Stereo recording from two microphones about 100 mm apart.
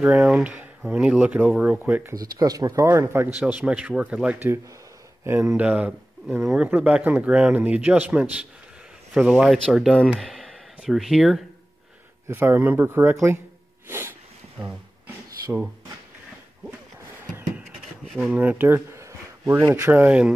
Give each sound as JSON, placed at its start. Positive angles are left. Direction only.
{"t": 0.0, "sound": "a man's voice", "side_deg": -10}
{"t": 2.1, "sound": "speech", "side_deg": -40}
{"t": 3.3, "sound": "a man's voice", "side_deg": -15}
{"t": 5.2, "sound": "speech", "side_deg": -25}
{"t": 5.6, "sound": "a man's voice", "side_deg": -15}
{"t": 12.3, "sound": "speech", "side_deg": -20}
{"t": 13.8, "sound": "snort", "side_deg": -20}
{"t": 18.0, "sound": "a sound", "side_deg": 0}
{"t": 18.3, "sound": "speech", "side_deg": -15}